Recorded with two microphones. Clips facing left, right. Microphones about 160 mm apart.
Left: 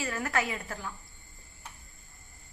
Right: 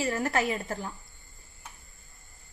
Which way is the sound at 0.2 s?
30° right (ahead or behind).